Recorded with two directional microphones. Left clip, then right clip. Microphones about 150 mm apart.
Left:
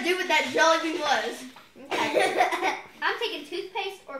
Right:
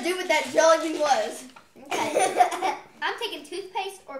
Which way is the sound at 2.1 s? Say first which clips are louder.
Right 2 dB; 20° right (ahead or behind).